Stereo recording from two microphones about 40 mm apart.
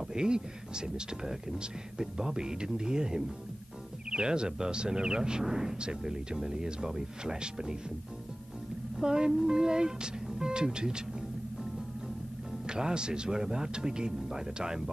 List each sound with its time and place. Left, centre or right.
0.1 s speech: centre
8.9 s music: centre
9.3 s speech: centre
12.6 s speech: centre